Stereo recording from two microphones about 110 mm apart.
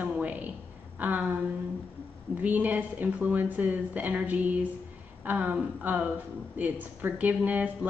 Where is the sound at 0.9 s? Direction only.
15° right (ahead or behind).